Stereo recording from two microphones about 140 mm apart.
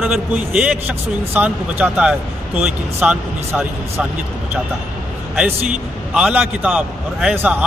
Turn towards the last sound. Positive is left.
turn(degrees=-10)  # may be behind; listen again after turning